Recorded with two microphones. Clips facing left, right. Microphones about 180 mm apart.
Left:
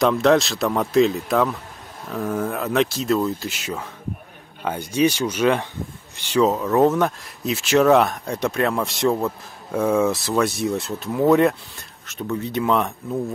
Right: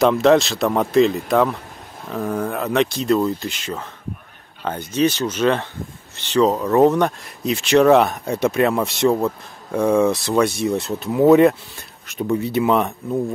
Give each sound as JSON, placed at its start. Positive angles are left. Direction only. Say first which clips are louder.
{"t": 0.0, "sound": "speech", "louder": "right 3 dB", "side_deg": 0}
{"t": 12.1, "sound": "speech", "louder": "right 5 dB", "side_deg": -15}